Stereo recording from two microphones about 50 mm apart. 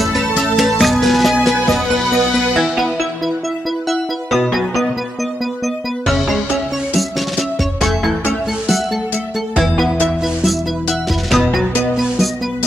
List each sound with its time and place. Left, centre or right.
0.0 s music: centre
3.9 s music: centre
6.0 s music: centre
9.6 s music: centre
11.3 s music: centre